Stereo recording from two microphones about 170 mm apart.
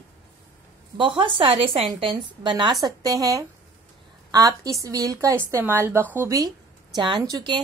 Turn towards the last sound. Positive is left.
turn(degrees=-25)  # may be behind; listen again after turning